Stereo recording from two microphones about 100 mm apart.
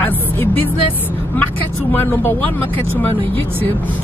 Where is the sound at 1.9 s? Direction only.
20° left (ahead or behind).